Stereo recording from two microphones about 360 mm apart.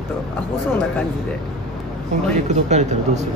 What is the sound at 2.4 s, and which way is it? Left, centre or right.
Speech, centre.